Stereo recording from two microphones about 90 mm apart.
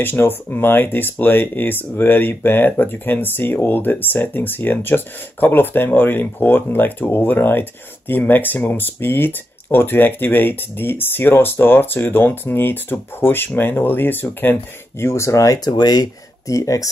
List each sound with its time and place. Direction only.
0.0 s speech: 25° left (ahead or behind)